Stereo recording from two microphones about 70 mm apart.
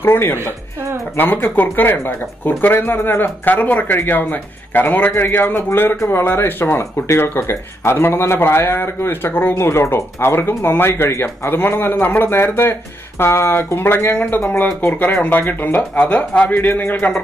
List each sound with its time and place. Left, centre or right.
0.0 s speech: left
15.4 s speech: left